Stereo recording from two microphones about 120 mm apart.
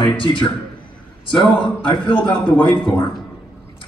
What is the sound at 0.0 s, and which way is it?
A man's voice, 45° left (ahead or behind).